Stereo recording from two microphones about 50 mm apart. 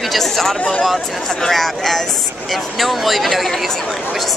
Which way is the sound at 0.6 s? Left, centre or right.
Left.